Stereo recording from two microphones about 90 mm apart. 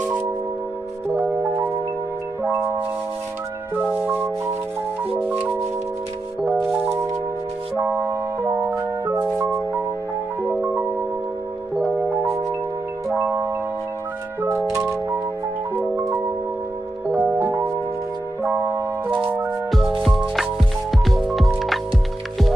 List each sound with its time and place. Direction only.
2.4 s music: 25° right (ahead or behind)
6.4 s music: 15° right (ahead or behind); by 9.6 s 35° right (ahead or behind)
10.5 s music: 20° right (ahead or behind)
13.2 s marimba: 25° right (ahead or behind)
17.1 s music: 25° right (ahead or behind)
20.3 s music: centre (ahead or behind)